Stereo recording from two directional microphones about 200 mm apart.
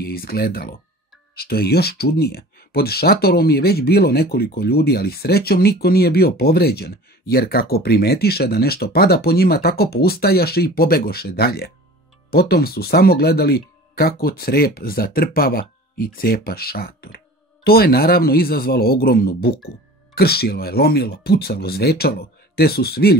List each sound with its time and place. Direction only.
0.0 s speech: 50° left (ahead or behind)